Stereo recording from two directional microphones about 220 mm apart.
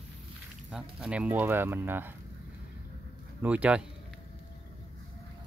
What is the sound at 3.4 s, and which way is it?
Speech, 5° right (ahead or behind).